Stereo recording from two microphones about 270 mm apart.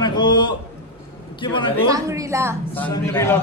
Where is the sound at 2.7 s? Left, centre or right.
Centre.